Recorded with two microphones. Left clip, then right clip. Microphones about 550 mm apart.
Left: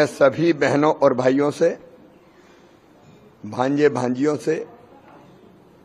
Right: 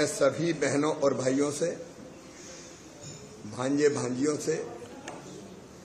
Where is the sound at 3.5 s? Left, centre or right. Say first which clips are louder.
Left 8 dB; left.